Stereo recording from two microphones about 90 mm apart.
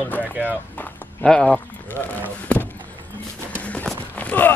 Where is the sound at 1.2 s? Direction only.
10° left (ahead or behind).